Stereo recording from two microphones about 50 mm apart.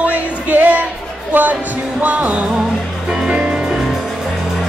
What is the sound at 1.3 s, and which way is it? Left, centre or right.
Speech, right.